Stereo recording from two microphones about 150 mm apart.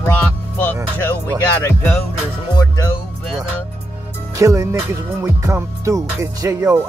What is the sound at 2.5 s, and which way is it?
Music, 25° left (ahead or behind).